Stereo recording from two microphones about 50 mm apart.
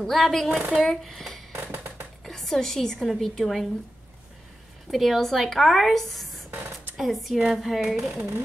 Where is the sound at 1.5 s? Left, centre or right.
Right.